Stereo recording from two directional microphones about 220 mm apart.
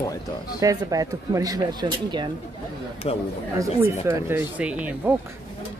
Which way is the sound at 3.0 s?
25° left (ahead or behind).